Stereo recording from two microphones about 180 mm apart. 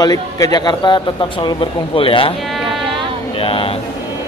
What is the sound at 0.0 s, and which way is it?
A man's voice, 20° left (ahead or behind).